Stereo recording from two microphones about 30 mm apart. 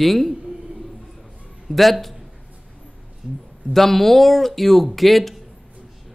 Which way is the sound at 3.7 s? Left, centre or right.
Centre.